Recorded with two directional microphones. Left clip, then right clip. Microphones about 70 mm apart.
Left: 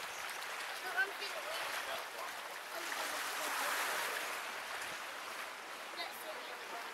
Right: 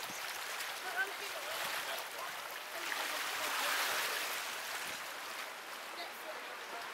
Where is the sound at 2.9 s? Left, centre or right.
Centre.